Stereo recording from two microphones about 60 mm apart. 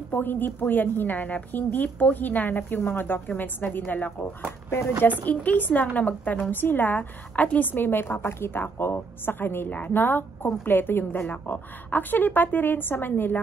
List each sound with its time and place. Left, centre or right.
0.1 s a woman's voice: left
4.6 s speech: left
5.2 s a woman's voice: left
9.7 s a woman's voice: left